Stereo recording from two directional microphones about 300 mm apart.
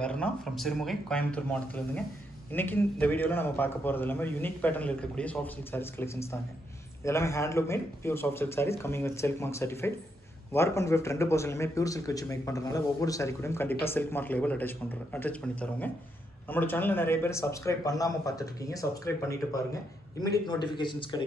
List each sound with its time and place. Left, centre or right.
0.0 s speech: centre